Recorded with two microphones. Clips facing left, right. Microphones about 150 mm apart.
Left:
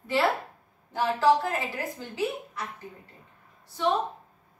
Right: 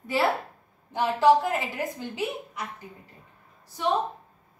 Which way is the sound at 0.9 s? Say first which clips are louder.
Right 2 dB; 20° right (ahead or behind).